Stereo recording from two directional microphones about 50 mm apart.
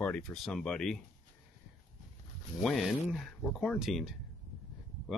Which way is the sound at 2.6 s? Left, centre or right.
Centre.